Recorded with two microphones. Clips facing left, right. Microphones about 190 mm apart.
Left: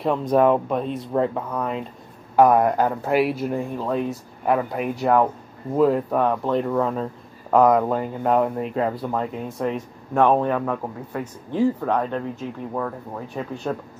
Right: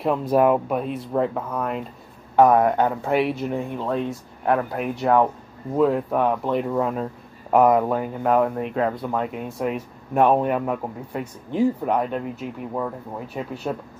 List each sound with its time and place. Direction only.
0.0 s speech: 5° right (ahead or behind)